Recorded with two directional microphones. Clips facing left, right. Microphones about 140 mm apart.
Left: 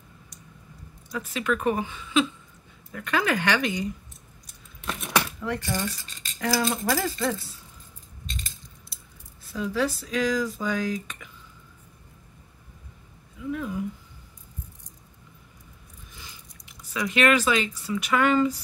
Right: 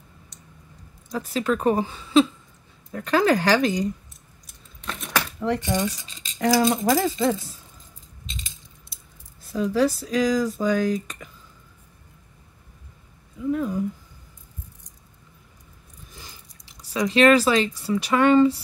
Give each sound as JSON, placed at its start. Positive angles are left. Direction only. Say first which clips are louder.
{"t": 1.1, "sound": "speech", "louder": "right 3 dB", "side_deg": -35}
{"t": 4.5, "sound": "keys jangling", "louder": "left 1 dB", "side_deg": 5}
{"t": 6.3, "sound": "speech", "louder": "right 6 dB", "side_deg": -40}
{"t": 9.4, "sound": "speech", "louder": "right 5 dB", "side_deg": -40}
{"t": 13.4, "sound": "speech", "louder": "right 6 dB", "side_deg": -40}
{"t": 16.2, "sound": "speech", "louder": "right 1 dB", "side_deg": -35}